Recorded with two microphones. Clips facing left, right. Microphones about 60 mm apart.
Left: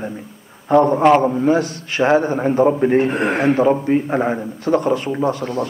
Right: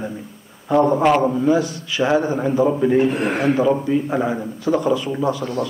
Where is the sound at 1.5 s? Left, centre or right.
Left.